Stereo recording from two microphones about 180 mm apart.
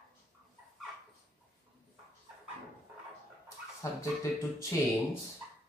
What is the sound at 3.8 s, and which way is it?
Speech, 20° left (ahead or behind).